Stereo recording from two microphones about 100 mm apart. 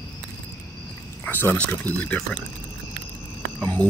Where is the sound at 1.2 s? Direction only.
20° left (ahead or behind).